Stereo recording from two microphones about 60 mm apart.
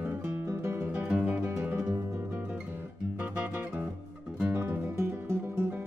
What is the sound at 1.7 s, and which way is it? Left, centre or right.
Music, right.